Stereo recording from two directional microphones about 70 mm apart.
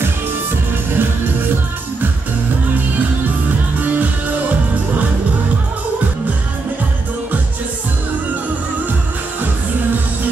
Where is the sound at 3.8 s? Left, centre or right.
Right.